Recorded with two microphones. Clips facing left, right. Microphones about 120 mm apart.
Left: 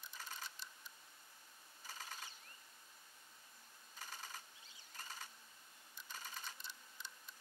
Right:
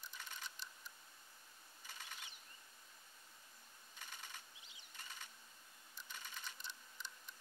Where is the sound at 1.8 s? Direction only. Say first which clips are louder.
Left 3 dB; 40° left (ahead or behind).